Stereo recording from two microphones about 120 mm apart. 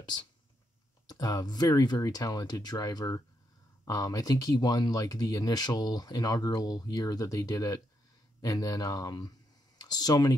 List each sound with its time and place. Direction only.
1.0 s speech: 30° left (ahead or behind)